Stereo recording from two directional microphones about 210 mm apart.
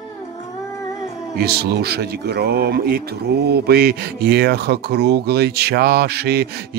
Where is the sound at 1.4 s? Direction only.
50° right (ahead or behind).